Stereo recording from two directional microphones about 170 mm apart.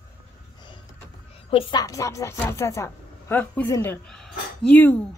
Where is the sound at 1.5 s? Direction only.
30° left (ahead or behind).